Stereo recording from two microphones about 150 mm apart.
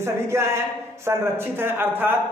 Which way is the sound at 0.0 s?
15° right (ahead or behind).